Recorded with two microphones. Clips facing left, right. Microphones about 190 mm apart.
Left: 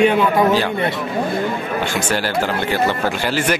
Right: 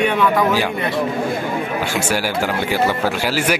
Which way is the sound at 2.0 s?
10° right (ahead or behind).